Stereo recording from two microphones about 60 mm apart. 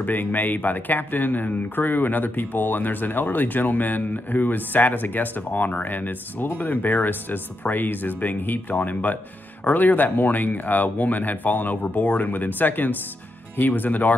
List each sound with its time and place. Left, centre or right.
0.0 s speech: left